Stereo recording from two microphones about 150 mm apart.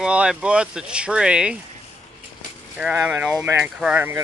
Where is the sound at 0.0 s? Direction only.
5° right (ahead or behind).